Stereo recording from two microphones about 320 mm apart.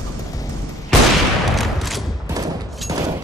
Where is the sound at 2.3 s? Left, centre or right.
Centre.